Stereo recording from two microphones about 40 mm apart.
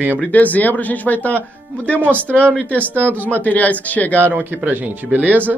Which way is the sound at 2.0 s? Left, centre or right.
Right.